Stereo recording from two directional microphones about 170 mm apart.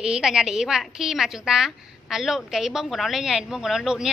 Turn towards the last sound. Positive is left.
turn(degrees=-5)  # may be behind; listen again after turning